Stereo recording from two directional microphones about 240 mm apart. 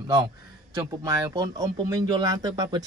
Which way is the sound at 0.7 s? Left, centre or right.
Centre.